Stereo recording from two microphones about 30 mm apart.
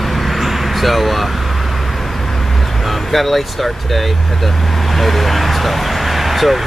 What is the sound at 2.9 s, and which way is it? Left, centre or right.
Speech, centre.